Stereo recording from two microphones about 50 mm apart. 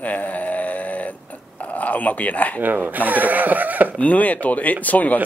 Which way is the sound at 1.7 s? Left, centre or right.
Left.